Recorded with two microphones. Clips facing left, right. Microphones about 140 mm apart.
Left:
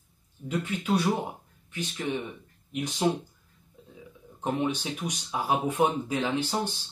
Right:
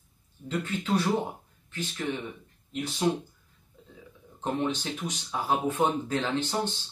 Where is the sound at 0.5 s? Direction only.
10° left (ahead or behind).